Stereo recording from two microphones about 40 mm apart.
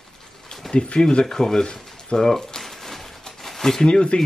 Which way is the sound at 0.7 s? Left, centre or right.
Left.